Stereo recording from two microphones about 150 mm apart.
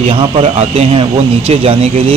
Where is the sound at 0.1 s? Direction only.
35° right (ahead or behind).